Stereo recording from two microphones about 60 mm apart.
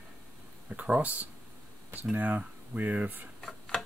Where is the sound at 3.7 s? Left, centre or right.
Centre.